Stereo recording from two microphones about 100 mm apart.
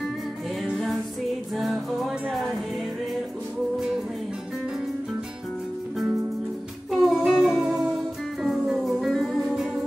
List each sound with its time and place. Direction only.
1.5 s music: centre (ahead or behind)
6.9 s music: centre (ahead or behind)